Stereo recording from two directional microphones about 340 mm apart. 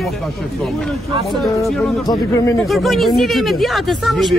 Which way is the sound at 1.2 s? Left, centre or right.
Centre.